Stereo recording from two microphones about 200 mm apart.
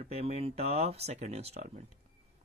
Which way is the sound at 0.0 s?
30° right (ahead or behind).